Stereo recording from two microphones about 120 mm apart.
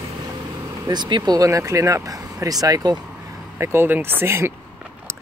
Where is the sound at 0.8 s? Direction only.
40° right (ahead or behind).